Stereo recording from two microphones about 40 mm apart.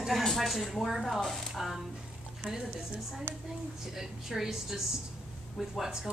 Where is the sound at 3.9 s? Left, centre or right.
Centre.